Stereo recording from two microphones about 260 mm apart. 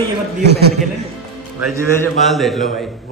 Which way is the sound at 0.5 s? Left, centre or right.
Right.